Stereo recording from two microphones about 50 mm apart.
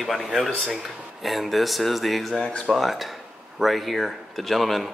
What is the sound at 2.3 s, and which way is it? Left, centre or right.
Speech, left.